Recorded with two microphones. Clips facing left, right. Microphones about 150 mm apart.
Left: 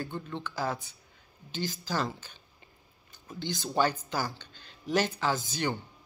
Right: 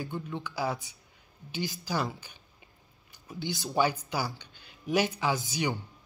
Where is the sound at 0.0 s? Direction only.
10° right (ahead or behind).